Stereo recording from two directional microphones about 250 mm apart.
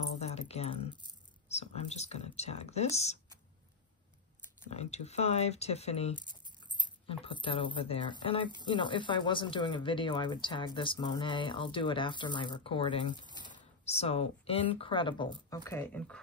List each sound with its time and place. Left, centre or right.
0.2 s keys jangling: left
1.5 s speech: left
4.6 s speech: left
15.6 s speech: centre